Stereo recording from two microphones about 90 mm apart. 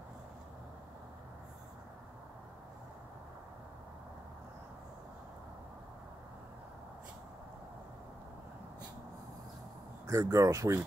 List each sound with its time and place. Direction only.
10.0 s speech: 30° right (ahead or behind)